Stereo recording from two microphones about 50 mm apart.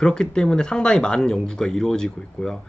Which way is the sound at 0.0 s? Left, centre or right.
Centre.